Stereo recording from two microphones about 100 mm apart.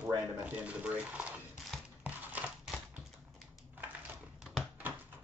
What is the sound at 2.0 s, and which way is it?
Crumpling, 15° right (ahead or behind).